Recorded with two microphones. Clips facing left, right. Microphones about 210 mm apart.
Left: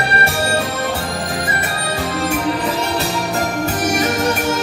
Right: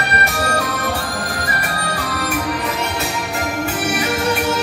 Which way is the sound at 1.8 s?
25° left (ahead or behind).